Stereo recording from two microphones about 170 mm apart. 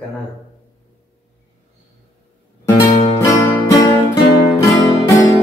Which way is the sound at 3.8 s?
20° left (ahead or behind).